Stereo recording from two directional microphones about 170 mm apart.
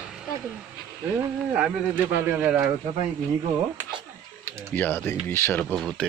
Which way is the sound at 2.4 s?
5° right (ahead or behind).